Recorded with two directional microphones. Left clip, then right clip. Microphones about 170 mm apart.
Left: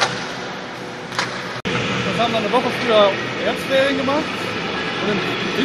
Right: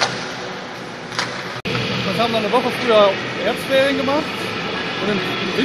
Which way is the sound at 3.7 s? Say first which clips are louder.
Right 1 dB; 40° right (ahead or behind).